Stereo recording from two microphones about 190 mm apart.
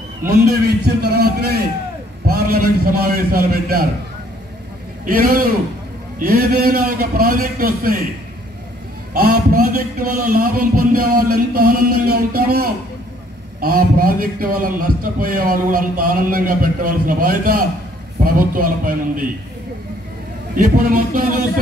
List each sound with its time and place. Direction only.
0.5 s a man's voice: 60° right (ahead or behind)
5.0 s a man's voice: 50° right (ahead or behind)
9.1 s a man's voice: 50° right (ahead or behind)
20.5 s a man's voice: 45° right (ahead or behind)